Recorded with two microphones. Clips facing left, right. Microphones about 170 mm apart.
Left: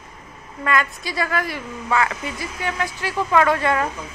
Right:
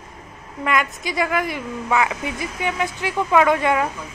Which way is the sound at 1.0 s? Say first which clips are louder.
Right 2 dB; 15° right (ahead or behind).